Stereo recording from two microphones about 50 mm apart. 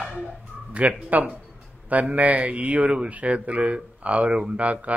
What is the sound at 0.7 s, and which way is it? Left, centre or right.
Speech, right.